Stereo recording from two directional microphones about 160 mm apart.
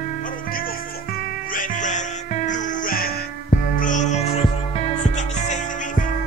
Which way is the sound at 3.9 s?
45° left (ahead or behind).